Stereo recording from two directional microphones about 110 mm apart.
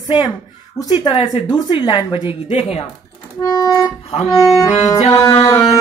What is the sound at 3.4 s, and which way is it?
Music, 40° left (ahead or behind).